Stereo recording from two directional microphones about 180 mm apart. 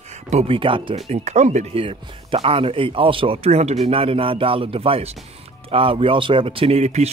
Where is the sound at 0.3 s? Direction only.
35° right (ahead or behind).